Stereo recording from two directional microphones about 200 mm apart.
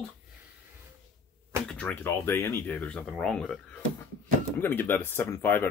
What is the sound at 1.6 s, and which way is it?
Speech, 5° left (ahead or behind).